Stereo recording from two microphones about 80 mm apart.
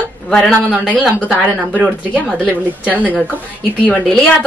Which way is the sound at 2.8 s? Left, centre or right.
Right.